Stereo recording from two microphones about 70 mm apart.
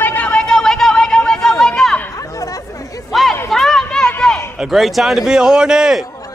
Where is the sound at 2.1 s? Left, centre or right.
Left.